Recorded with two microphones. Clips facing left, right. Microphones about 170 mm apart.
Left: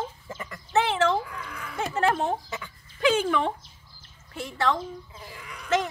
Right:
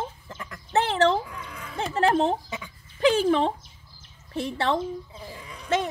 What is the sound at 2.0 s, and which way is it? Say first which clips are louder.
Speech: right 4 dB; 35° right (ahead or behind).